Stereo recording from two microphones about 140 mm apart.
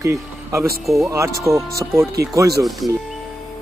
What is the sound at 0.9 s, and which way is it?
Speech, 20° right (ahead or behind).